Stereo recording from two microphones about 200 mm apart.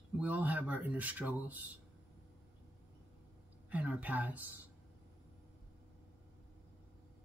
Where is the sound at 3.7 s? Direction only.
5° right (ahead or behind).